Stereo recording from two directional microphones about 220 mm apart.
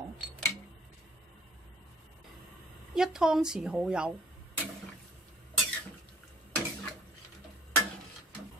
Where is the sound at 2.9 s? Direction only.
Centre (ahead or behind).